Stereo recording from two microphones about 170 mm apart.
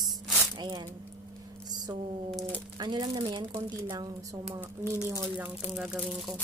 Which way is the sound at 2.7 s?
25° right (ahead or behind).